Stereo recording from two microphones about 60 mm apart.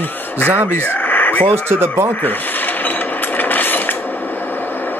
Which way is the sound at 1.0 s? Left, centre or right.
Left.